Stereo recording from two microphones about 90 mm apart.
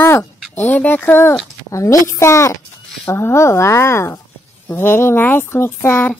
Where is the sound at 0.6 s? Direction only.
20° left (ahead or behind).